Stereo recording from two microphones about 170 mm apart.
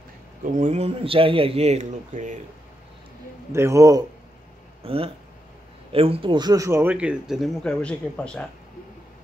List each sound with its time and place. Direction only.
0.6 s speech: 40° right (ahead or behind)
3.5 s speech: 15° right (ahead or behind)
4.8 s speech: 35° right (ahead or behind); by 8.5 s 5° left (ahead or behind)